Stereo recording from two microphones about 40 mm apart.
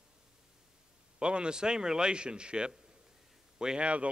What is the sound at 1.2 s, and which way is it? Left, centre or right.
A man's voice, right.